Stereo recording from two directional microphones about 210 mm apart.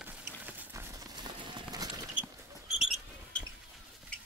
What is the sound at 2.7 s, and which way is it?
Mouse, centre (ahead or behind).